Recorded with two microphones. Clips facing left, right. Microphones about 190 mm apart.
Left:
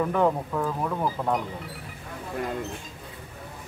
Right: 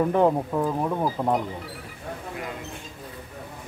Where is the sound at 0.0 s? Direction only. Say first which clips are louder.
Right 3 dB; 25° right (ahead or behind).